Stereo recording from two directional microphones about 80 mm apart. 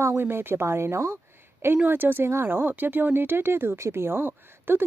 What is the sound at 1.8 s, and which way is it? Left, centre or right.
Speech, right.